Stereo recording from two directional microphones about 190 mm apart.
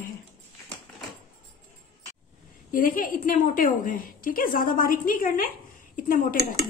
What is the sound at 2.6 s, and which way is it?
A woman's voice, 45° left (ahead or behind).